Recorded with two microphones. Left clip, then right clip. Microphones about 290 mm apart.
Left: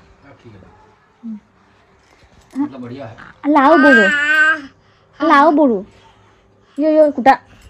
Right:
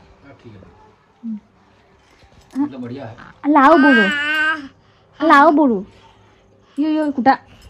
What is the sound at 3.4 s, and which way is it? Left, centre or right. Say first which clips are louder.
Speech: even; right.